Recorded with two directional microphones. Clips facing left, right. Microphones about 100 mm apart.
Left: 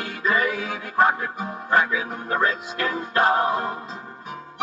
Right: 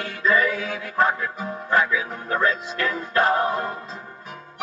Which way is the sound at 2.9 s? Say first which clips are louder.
Left 1 dB; 25° left (ahead or behind).